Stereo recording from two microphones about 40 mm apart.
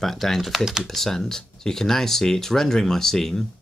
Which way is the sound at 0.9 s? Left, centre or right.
Centre.